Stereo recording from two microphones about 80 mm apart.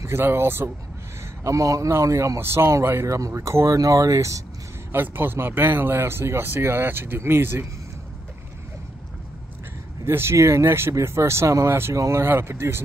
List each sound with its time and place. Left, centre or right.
0.0 s speech: right
1.4 s speech: right
2.4 s speech: right
4.9 s speech: right
10.0 s speech: right